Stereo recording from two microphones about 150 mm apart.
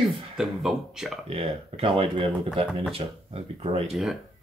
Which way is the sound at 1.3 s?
40° right (ahead or behind).